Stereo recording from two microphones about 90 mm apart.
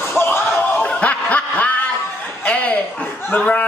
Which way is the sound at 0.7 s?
15° left (ahead or behind).